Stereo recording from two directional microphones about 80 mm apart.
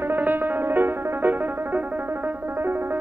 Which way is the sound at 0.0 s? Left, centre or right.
Right.